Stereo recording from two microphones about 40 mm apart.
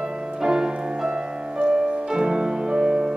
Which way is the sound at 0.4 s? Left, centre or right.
Centre.